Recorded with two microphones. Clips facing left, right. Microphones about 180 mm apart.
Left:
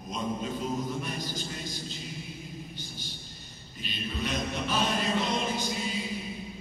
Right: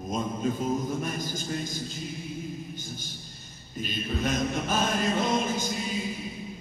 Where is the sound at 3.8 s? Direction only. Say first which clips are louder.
Right 5 dB; 45° right (ahead or behind).